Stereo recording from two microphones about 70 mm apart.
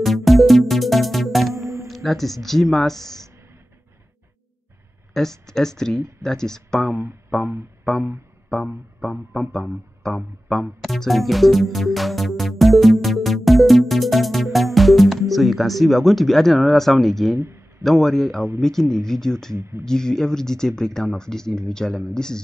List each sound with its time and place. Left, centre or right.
0.0 s music: centre
2.0 s speech: centre
5.1 s speech: centre
6.9 s speech: right
8.5 s speech: centre
10.8 s music: centre
17.8 s speech: centre
19.5 s speech: right
19.8 s speech: centre